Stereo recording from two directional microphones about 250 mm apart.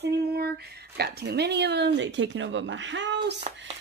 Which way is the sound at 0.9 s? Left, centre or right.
Right.